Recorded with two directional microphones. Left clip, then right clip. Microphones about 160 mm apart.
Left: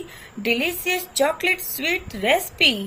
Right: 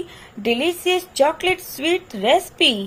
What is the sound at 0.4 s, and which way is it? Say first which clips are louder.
Speech: right 2 dB; 35° right (ahead or behind).